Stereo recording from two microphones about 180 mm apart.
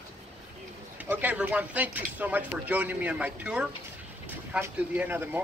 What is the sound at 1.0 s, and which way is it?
Speech, 10° right (ahead or behind).